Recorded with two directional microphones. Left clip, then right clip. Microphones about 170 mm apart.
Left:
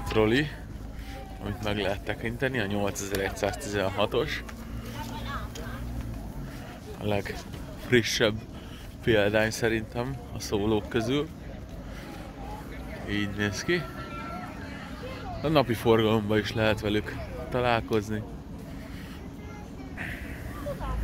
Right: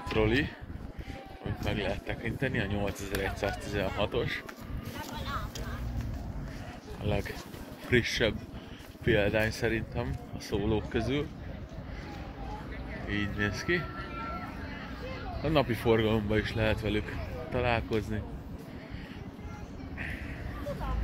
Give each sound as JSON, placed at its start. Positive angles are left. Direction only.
{"t": 0.0, "sound": "speech", "side_deg": 35}
{"t": 7.0, "sound": "speech", "side_deg": 30}
{"t": 13.1, "sound": "speech", "side_deg": 30}
{"t": 15.4, "sound": "speech", "side_deg": 25}